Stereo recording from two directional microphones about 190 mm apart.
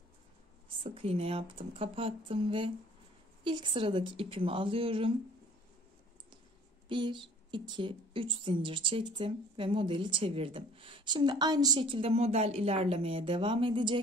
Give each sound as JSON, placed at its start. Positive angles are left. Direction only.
{"t": 0.7, "sound": "a woman's voice", "side_deg": -30}
{"t": 6.9, "sound": "a woman's voice", "side_deg": -25}